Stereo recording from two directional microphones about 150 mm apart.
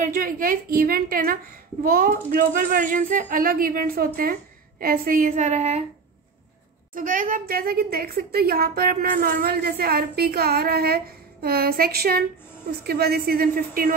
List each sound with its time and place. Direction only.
0.0 s speech: 65° right (ahead or behind); by 5.9 s 50° right (ahead or behind)
6.9 s a woman's voice: 65° right (ahead or behind)